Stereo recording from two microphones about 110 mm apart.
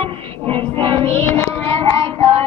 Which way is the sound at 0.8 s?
55° right (ahead or behind).